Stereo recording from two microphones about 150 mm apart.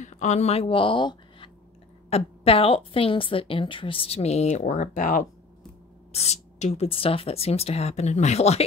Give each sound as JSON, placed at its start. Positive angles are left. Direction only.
{"t": 0.0, "sound": "a woman's voice", "side_deg": 50}
{"t": 6.1, "sound": "speech", "side_deg": 45}